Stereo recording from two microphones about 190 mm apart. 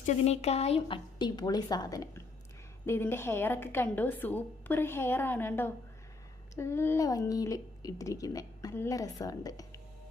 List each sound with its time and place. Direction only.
0.0 s a woman's voice: 35° left (ahead or behind); by 9.7 s 20° left (ahead or behind)